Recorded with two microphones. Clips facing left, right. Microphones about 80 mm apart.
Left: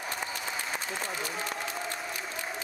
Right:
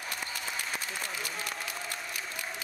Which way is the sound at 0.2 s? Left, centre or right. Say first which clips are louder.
Left 2 dB; centre.